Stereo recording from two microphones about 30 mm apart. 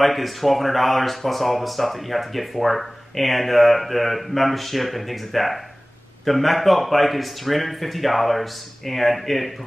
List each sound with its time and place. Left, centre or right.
0.0 s speech: centre